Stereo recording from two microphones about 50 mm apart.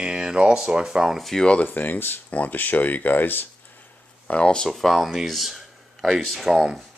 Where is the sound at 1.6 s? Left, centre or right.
Left.